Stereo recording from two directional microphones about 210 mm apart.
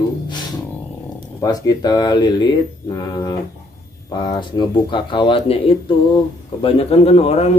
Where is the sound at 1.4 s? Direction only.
20° left (ahead or behind).